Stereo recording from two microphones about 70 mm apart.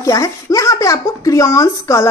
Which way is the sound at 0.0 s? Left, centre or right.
Left.